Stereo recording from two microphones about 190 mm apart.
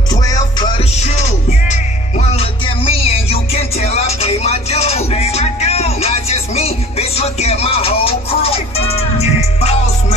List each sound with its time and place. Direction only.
0.1 s music: 20° left (ahead or behind)
1.7 s music: 35° left (ahead or behind)